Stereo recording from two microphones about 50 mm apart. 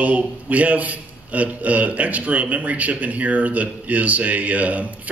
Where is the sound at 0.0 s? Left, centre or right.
Right.